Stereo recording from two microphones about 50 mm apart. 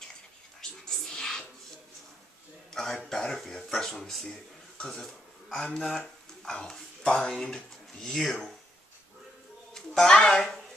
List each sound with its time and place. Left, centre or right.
0.6 s television: centre
2.7 s a sound: centre
3.9 s speech: centre
6.4 s speech: left
9.8 s a child's voice: centre